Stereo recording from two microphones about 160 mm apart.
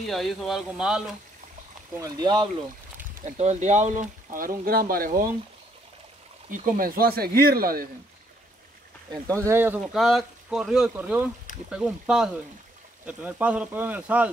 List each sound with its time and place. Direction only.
0.0 s speech: centre (ahead or behind)
2.0 s speech: 25° right (ahead or behind)
3.3 s speech: 45° right (ahead or behind)
6.5 s speech: 60° right (ahead or behind)
9.1 s speech: 20° right (ahead or behind)
9.9 s speech: centre (ahead or behind)